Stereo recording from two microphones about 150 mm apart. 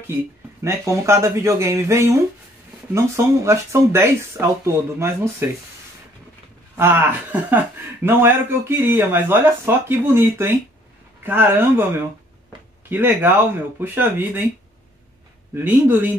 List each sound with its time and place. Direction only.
0.7 s speech: 20° right (ahead or behind)
6.8 s speech: 15° right (ahead or behind)
12.9 s speech: 15° right (ahead or behind)
15.5 s speech: 15° right (ahead or behind)